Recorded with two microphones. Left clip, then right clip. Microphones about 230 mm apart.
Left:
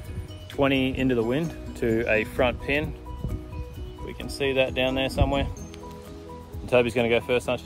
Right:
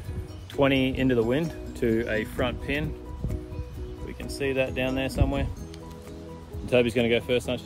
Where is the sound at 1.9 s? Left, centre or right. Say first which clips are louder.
Left 4 dB; left.